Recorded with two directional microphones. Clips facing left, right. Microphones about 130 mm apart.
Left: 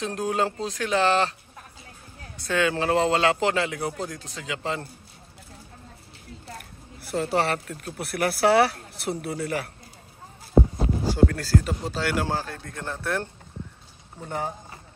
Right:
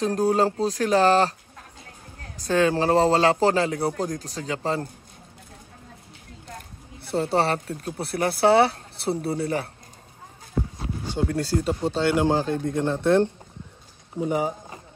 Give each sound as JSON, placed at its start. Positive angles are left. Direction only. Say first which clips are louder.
{"t": 0.0, "sound": "a man's voice", "louder": "right 5 dB", "side_deg": -40}
{"t": 2.3, "sound": "a man's voice", "louder": "right 4 dB", "side_deg": -35}
{"t": 7.0, "sound": "speech", "louder": "right 2 dB", "side_deg": -30}
{"t": 11.2, "sound": "speech", "louder": "right 4 dB", "side_deg": -25}
{"t": 14.2, "sound": "speech", "louder": "right 6 dB", "side_deg": -10}